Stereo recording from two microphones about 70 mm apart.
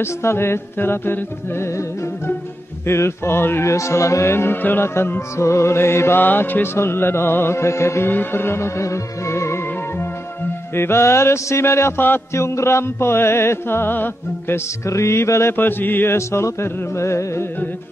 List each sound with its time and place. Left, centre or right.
0.0 s music: left
2.9 s music: left
3.7 s music: left
8.1 s music: left
14.9 s music: left
15.5 s mantra: left
16.2 s music: left